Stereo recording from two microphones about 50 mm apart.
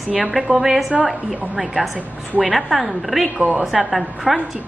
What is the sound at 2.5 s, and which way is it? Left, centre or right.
Speech, centre.